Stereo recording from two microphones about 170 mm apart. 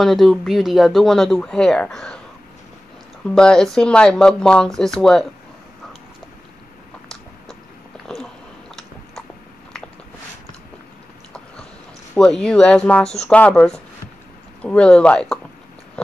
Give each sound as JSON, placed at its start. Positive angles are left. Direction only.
{"t": 0.0, "sound": "speech", "side_deg": 0}
{"t": 3.3, "sound": "speech", "side_deg": 5}
{"t": 12.2, "sound": "speech", "side_deg": 5}